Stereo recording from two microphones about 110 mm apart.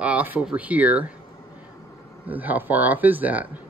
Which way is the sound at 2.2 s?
15° right (ahead or behind).